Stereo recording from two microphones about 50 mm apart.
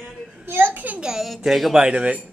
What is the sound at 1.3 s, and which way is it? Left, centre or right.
Speech, centre.